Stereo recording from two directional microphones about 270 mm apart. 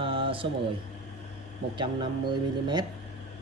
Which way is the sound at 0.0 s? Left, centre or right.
Centre.